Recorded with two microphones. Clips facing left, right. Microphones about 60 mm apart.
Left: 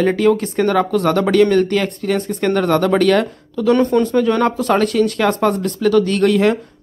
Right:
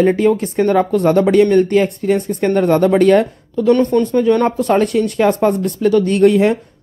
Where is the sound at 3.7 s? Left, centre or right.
Centre.